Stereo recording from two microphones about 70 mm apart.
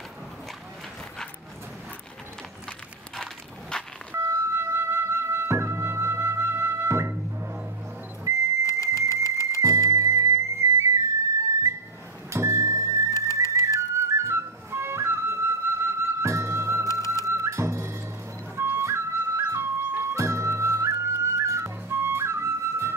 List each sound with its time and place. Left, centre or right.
3.7 s vehicle: centre
4.1 s music: right
8.3 s vehicle: right
8.6 s a sound: left
9.8 s music: right
12.3 s music: right
13.1 s music: left
13.7 s music: right
16.8 s music: left
17.3 s music: right